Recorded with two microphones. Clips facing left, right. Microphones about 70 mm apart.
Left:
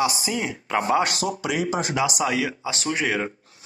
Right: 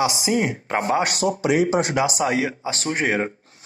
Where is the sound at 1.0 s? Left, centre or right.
Right.